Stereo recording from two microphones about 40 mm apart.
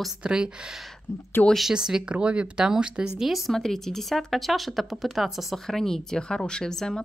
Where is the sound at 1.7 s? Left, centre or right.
Centre.